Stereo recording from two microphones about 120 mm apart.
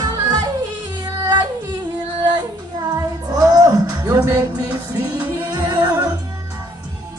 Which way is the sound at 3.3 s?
30° right (ahead or behind).